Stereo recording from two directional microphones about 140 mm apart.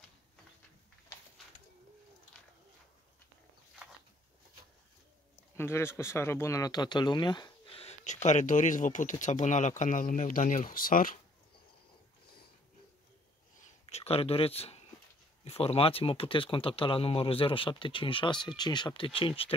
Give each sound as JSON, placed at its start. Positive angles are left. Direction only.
{"t": 5.6, "sound": "speech", "side_deg": 20}
{"t": 13.8, "sound": "speech", "side_deg": 45}